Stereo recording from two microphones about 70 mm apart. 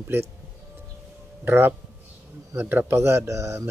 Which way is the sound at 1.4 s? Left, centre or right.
Right.